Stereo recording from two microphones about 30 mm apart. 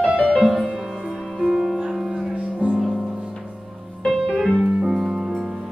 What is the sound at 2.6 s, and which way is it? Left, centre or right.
Music, right.